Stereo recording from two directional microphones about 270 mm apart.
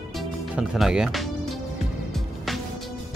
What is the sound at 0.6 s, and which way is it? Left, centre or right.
Speech, centre.